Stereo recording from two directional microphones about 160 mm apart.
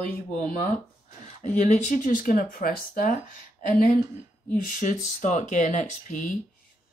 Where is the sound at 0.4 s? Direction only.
50° left (ahead or behind).